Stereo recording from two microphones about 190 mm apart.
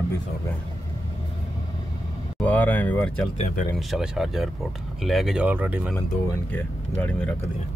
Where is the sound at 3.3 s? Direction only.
35° left (ahead or behind).